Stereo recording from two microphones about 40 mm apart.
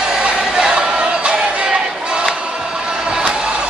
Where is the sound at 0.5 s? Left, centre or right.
Right.